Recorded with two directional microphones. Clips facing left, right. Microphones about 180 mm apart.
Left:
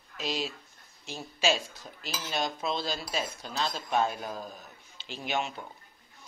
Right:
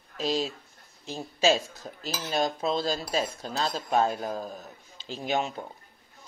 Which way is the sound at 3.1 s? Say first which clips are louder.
Right 4 dB; 40° right (ahead or behind).